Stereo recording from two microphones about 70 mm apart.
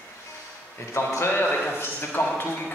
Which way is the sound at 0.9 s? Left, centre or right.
Left.